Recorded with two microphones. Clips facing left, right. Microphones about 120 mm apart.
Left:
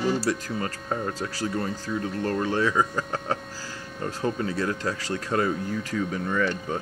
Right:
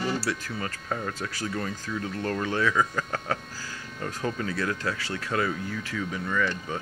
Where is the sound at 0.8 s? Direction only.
25° left (ahead or behind).